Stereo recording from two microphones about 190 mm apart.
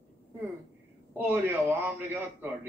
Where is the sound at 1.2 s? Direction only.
10° right (ahead or behind).